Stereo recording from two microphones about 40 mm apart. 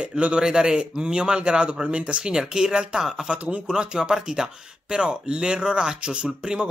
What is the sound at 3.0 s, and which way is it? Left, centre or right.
Speech, centre.